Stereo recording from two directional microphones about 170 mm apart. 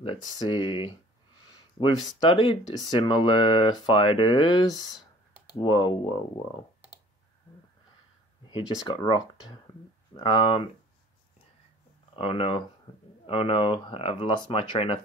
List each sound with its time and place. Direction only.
0.5 s speech: 30° left (ahead or behind)
2.1 s speech: 30° left (ahead or behind)
8.5 s speech: 25° left (ahead or behind)
12.2 s speech: 35° left (ahead or behind)